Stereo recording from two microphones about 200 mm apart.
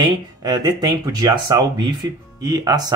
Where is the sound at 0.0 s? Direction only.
20° right (ahead or behind).